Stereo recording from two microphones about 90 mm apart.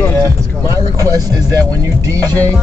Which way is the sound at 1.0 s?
40° right (ahead or behind).